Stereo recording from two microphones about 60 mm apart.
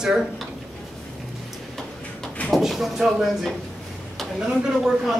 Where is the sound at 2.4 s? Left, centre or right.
Centre.